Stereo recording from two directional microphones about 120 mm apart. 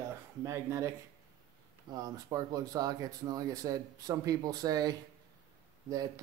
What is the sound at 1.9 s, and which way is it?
Speech, 30° right (ahead or behind).